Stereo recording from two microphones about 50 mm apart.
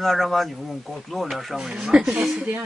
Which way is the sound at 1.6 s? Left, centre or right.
Centre.